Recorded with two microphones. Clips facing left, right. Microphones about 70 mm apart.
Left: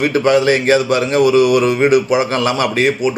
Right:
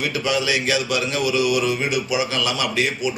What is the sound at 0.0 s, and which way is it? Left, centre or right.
Speech, left.